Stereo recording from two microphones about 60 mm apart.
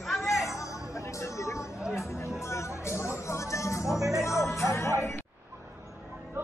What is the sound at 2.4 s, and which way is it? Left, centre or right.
Speech, left.